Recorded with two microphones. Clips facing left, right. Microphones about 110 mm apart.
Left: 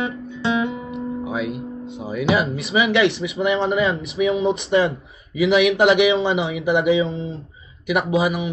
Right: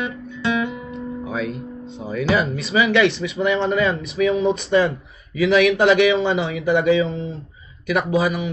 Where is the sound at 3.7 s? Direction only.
Centre (ahead or behind).